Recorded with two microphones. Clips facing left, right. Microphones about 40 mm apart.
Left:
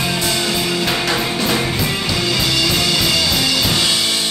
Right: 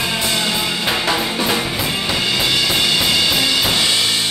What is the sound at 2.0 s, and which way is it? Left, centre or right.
Music, right.